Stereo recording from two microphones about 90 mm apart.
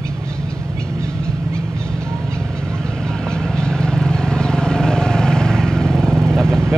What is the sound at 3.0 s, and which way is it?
Vehicle, 10° left (ahead or behind).